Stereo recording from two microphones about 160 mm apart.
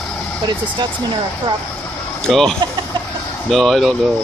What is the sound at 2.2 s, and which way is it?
Speech, 5° left (ahead or behind).